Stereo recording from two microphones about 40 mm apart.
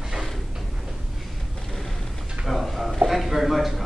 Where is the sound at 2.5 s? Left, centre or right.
Centre.